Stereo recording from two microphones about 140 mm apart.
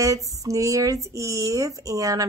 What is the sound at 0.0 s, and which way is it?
Speech, 25° right (ahead or behind).